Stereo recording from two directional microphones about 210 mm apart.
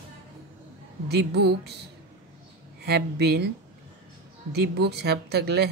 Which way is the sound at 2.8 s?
50° right (ahead or behind).